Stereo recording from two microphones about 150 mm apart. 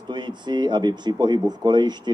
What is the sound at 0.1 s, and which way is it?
Speech, 30° right (ahead or behind).